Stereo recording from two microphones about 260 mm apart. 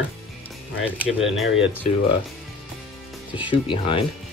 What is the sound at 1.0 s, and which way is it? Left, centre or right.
Speech, centre.